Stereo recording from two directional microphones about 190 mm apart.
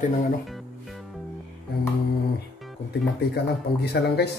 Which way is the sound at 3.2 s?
60° left (ahead or behind).